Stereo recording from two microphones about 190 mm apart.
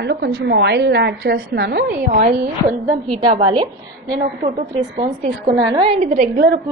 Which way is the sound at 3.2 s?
25° right (ahead or behind).